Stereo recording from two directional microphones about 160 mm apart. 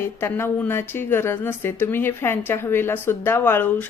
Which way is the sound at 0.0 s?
15° left (ahead or behind).